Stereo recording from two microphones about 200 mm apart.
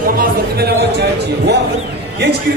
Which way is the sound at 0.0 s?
50° right (ahead or behind).